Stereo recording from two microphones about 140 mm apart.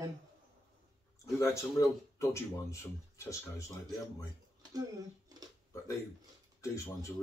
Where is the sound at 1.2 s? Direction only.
20° left (ahead or behind).